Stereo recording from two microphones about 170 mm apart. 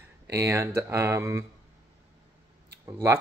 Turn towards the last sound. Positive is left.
turn(degrees=-15)  # may be behind; listen again after turning